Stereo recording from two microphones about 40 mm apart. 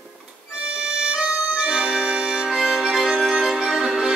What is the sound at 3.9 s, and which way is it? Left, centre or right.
Music, centre.